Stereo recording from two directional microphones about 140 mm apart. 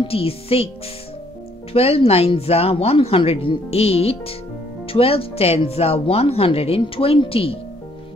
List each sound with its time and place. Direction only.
0.0 s speech: 45° left (ahead or behind)
1.7 s speech: 45° left (ahead or behind)